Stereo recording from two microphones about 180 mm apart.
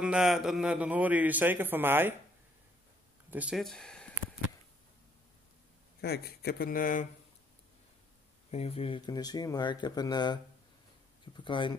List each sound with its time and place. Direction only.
0.0 s a man's voice: 5° right (ahead or behind)
3.3 s speech: 5° right (ahead or behind)
5.9 s speech: 60° left (ahead or behind)
8.5 s speech: 35° left (ahead or behind)